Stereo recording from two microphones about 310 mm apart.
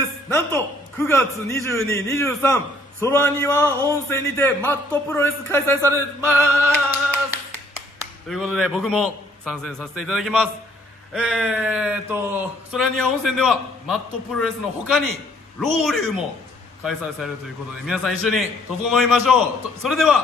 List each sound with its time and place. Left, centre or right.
0.0 s a man's voice: centre
5.8 s a sound: centre
8.3 s speech: centre
17.8 s speech: centre